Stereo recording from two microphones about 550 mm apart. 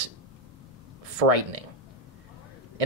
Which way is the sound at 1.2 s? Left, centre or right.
Right.